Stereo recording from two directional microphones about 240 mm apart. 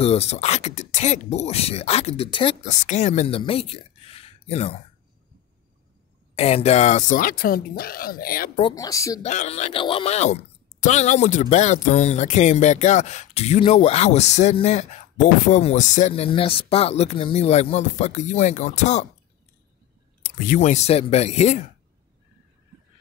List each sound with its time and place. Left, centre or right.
0.0 s speech: left
6.3 s speech: left
8.5 s speech: centre
9.2 s speech: left
20.2 s speech: left